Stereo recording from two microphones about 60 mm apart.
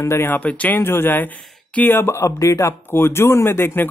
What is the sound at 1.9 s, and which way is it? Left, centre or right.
Speech, left.